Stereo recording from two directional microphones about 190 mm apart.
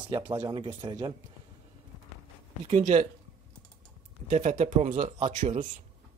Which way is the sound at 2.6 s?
35° right (ahead or behind).